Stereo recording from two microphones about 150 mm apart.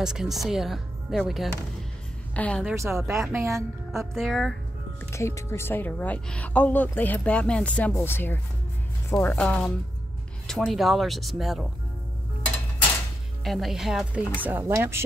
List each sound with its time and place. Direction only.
0.0 s a woman's voice: 5° right (ahead or behind)
2.7 s a woman's voice: 20° right (ahead or behind)
4.1 s speech: centre (ahead or behind)
5.1 s speech: 20° left (ahead or behind); by 11.7 s centre (ahead or behind)
13.4 s speech: centre (ahead or behind); by 15.0 s 15° right (ahead or behind)